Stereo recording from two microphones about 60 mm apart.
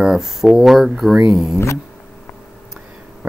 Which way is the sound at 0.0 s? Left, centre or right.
Centre.